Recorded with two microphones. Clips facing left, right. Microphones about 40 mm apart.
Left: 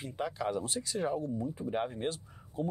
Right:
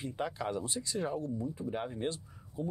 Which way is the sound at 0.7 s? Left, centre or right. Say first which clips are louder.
Left 2 dB; left.